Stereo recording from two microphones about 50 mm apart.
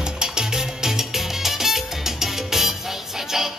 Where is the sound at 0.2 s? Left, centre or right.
Centre.